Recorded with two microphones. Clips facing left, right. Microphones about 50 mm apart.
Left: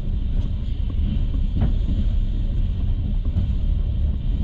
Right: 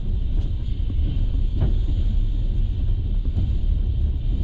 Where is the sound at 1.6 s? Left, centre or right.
Centre.